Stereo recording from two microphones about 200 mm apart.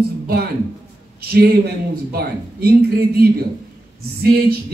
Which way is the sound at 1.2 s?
50° right (ahead or behind).